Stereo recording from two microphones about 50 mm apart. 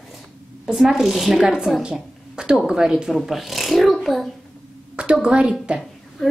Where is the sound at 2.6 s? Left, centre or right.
Centre.